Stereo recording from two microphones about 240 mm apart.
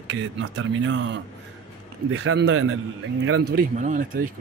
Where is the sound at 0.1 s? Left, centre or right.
Right.